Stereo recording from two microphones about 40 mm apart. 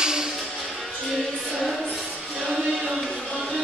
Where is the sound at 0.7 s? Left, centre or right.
Centre.